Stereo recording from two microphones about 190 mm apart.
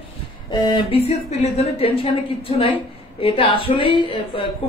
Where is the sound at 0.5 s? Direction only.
25° left (ahead or behind).